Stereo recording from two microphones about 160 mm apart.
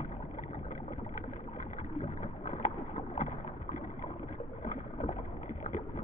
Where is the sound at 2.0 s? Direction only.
50° left (ahead or behind).